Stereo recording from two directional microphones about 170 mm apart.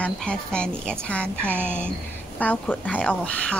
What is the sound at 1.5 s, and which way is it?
Speech, 10° right (ahead or behind).